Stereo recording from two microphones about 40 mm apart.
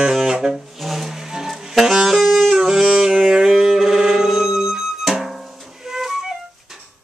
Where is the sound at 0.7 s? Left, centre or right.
Centre.